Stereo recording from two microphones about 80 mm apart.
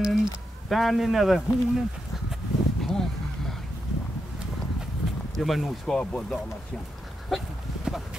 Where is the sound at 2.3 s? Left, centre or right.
Centre.